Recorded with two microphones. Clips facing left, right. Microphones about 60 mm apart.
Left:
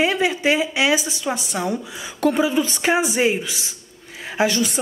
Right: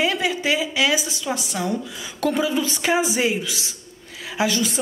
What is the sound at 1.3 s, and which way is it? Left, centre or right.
A man's voice, centre.